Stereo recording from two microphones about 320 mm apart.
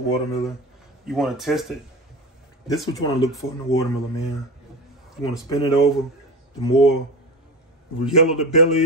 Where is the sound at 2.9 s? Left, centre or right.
Centre.